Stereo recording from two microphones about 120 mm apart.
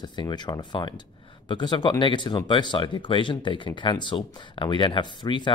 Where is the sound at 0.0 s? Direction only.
40° left (ahead or behind).